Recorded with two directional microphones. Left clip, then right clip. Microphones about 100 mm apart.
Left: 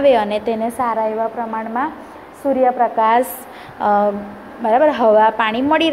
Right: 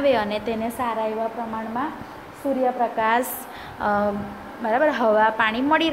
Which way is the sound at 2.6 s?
30° left (ahead or behind).